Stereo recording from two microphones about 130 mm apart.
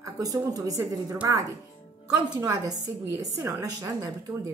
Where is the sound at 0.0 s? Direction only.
25° right (ahead or behind).